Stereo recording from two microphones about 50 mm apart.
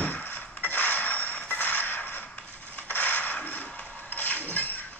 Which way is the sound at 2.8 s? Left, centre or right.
Left.